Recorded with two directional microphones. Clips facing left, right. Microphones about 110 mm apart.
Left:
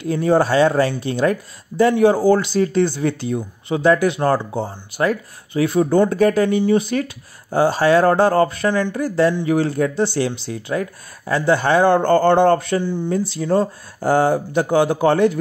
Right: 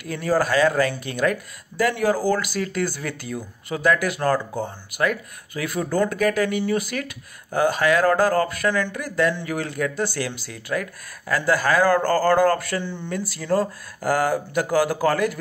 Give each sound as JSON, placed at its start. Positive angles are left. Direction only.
{"t": 0.0, "sound": "speech", "side_deg": 25}